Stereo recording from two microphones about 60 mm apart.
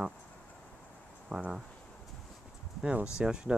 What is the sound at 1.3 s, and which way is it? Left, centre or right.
Speech, right.